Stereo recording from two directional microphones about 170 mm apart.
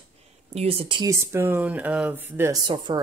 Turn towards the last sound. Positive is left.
turn(degrees=-25)  # may be behind; listen again after turning